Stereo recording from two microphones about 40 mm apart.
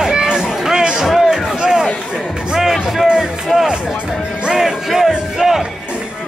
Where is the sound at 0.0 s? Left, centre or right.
Centre.